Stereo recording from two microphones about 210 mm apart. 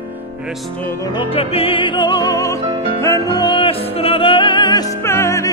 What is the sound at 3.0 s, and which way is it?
Music, 15° left (ahead or behind).